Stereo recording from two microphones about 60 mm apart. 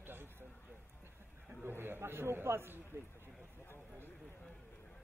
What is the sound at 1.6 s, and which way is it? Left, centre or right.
A man's voice, right.